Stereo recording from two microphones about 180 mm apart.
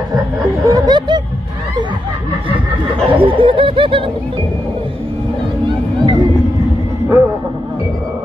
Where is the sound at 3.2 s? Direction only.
30° right (ahead or behind).